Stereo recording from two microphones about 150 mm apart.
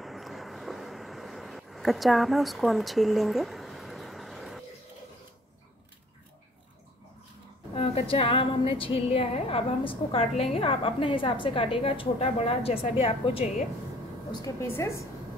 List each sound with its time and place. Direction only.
0.0 s vehicle: centre (ahead or behind)
7.7 s a woman's voice: 40° left (ahead or behind)
14.4 s a woman's voice: 20° left (ahead or behind)